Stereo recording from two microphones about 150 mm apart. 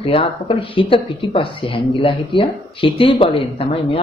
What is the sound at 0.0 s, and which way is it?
A woman's voice, 35° left (ahead or behind).